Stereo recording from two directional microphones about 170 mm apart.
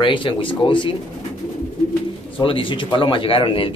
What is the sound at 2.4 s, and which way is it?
Speech, 30° left (ahead or behind).